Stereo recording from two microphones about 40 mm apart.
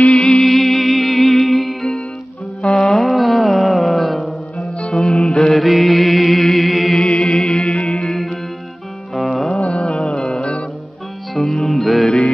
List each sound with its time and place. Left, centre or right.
0.0 s music: left
0.3 s music: centre
1.2 s music: centre
2.6 s music: left
2.9 s music: centre
5.2 s mantra: centre
5.6 s music: centre
7.0 s music: centre
8.1 s music: centre
9.7 s music: left
11.6 s music: centre